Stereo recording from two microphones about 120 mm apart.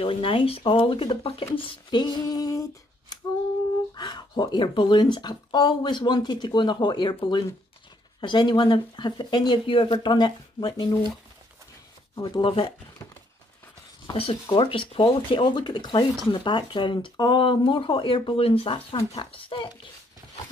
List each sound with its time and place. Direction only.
0.0 s speech: 45° left (ahead or behind)
12.2 s speech: 40° left (ahead or behind)
14.5 s speech: 45° left (ahead or behind)